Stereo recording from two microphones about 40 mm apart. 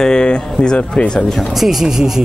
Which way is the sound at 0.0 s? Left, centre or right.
Left.